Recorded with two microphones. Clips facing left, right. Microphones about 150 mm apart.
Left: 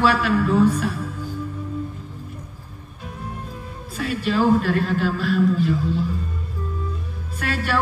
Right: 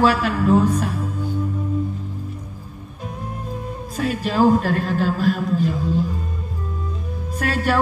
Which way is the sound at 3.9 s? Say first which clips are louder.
Right 1 dB; 40° right (ahead or behind).